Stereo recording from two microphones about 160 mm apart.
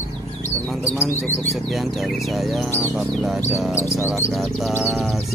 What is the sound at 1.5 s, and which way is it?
Speech, centre (ahead or behind).